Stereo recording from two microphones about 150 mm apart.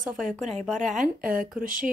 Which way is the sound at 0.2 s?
55° right (ahead or behind).